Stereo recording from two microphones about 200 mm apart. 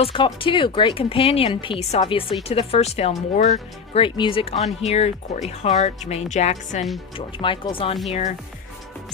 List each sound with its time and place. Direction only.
0.0 s speech: 25° left (ahead or behind)
7.2 s speech: 25° left (ahead or behind)